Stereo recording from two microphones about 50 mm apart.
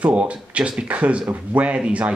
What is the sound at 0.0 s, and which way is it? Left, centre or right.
Speech, right.